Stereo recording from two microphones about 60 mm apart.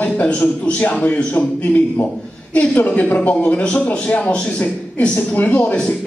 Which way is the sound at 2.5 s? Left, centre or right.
Left.